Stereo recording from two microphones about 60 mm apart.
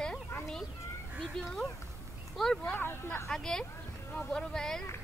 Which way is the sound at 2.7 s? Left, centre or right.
Left.